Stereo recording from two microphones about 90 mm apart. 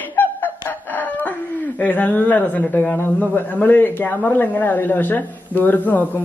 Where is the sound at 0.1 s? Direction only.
20° left (ahead or behind).